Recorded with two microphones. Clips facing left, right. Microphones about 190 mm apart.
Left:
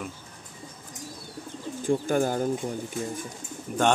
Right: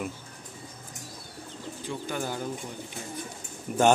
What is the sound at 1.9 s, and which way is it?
Speech, 50° left (ahead or behind).